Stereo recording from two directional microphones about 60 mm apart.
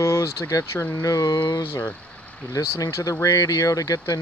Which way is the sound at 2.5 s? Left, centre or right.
Left.